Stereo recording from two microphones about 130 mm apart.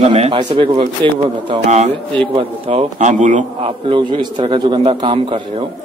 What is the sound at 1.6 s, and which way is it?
Speech, 60° right (ahead or behind).